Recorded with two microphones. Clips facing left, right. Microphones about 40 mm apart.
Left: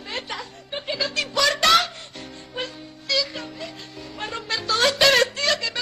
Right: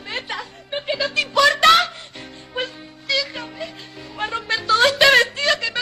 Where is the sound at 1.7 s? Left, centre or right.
Centre.